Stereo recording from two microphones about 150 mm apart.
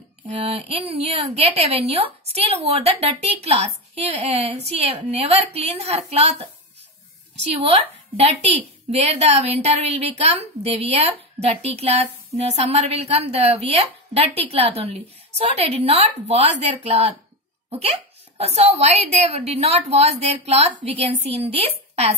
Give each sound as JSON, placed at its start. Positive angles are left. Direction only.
{"t": 0.4, "sound": "a woman's voice", "side_deg": -40}
{"t": 8.2, "sound": "a woman's voice", "side_deg": -40}